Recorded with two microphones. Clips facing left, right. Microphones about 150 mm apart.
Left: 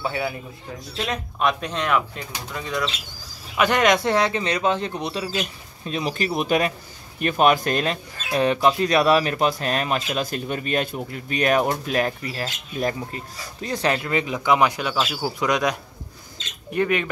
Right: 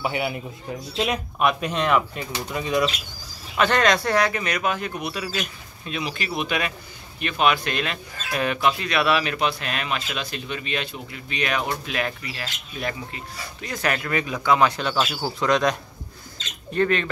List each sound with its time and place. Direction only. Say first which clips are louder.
0.0 s speech: right 1 dB; 15° right (ahead or behind)
3.5 s speech: left 1 dB; 15° left (ahead or behind)